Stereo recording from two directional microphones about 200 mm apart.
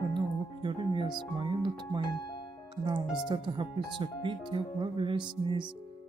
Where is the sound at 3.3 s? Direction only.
25° right (ahead or behind).